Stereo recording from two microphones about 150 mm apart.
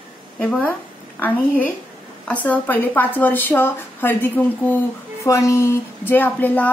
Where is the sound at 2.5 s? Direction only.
10° left (ahead or behind).